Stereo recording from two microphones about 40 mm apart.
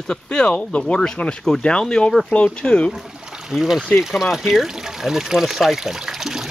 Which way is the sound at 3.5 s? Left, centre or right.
Centre.